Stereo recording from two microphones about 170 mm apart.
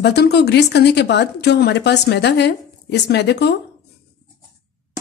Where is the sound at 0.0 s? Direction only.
75° left (ahead or behind).